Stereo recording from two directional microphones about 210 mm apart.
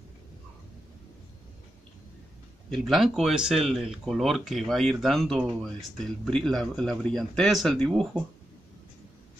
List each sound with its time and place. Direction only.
2.7 s speech: centre (ahead or behind)